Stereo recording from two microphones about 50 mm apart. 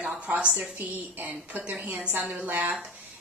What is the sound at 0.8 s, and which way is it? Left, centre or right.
A woman's voice, right.